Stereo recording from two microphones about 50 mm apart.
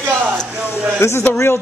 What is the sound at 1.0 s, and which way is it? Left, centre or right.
Speech, left.